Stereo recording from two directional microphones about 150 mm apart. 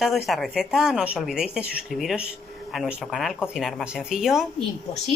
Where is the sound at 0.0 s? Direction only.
Centre (ahead or behind).